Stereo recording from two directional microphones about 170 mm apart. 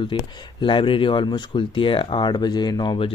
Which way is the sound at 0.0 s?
30° left (ahead or behind).